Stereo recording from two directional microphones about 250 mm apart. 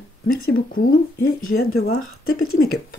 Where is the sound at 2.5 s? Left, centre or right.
Left.